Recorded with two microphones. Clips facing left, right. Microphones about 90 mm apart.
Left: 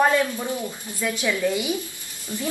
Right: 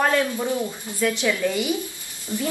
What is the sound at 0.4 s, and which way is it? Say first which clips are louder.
Speech: right 4 dB; 20° right (ahead or behind).